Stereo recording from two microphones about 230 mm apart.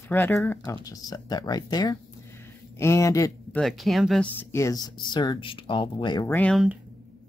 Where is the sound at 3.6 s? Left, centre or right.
Centre.